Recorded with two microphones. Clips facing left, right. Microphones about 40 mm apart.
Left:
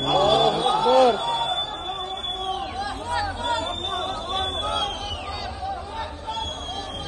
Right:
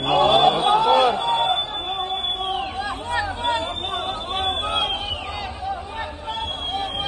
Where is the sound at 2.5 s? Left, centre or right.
Right.